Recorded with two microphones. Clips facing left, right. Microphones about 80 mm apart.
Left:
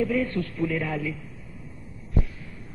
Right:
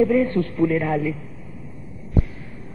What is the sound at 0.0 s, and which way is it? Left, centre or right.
A man's voice, right.